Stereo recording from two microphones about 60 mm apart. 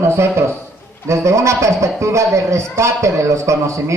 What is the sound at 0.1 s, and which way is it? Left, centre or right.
A man's voice, right.